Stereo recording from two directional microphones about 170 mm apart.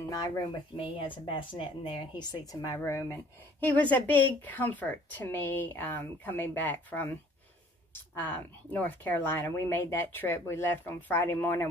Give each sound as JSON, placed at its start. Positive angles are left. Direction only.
{"t": 0.1, "sound": "speech", "side_deg": 25}